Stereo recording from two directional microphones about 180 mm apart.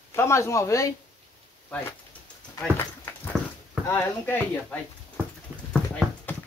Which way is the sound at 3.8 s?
10° left (ahead or behind).